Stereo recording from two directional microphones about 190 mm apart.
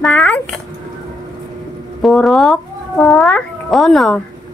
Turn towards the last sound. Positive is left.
turn(degrees=0)  # may be behind; listen again after turning